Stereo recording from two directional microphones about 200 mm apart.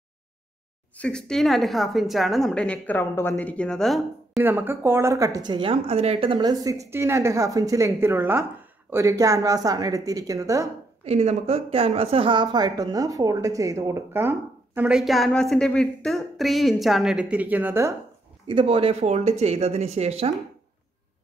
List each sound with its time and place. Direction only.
0.9 s a woman's voice: 5° left (ahead or behind)
4.4 s a woman's voice: 10° right (ahead or behind)
11.1 s a woman's voice: 30° right (ahead or behind); by 17.9 s 10° right (ahead or behind)
18.5 s speech: 25° right (ahead or behind)